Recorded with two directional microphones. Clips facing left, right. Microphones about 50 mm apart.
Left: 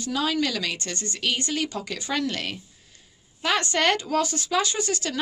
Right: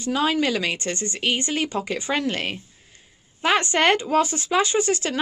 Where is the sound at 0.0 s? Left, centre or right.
Right.